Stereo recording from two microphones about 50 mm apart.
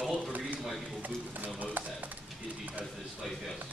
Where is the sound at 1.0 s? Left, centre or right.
Right.